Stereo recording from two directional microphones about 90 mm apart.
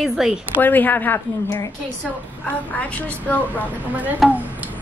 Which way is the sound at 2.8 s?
15° left (ahead or behind).